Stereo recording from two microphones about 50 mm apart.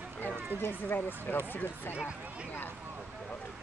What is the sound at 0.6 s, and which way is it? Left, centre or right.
Speech, left.